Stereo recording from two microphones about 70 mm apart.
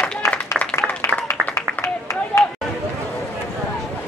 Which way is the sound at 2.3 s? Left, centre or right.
Centre.